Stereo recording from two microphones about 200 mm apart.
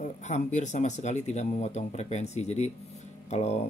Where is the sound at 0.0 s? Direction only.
35° left (ahead or behind).